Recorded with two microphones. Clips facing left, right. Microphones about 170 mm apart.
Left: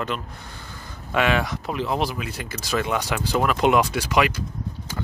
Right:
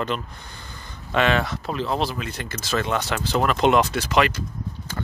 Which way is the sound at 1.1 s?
10° left (ahead or behind).